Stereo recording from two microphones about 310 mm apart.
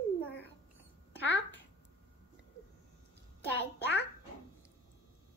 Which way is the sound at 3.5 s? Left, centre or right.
Left.